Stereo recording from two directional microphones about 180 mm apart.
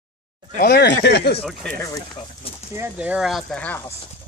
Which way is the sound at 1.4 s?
5° left (ahead or behind).